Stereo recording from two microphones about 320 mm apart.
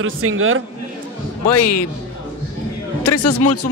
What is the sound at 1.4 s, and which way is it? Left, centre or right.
Speech, left.